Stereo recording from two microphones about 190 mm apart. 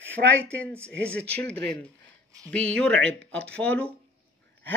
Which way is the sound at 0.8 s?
5° left (ahead or behind).